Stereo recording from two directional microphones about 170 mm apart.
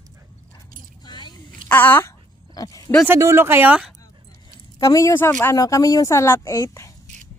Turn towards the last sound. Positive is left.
turn(degrees=20)  # may be behind; listen again after turning